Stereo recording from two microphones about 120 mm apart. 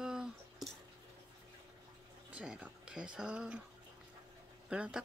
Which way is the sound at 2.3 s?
10° right (ahead or behind).